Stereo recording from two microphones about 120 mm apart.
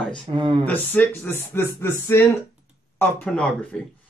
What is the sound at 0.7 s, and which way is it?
Speech, 15° left (ahead or behind).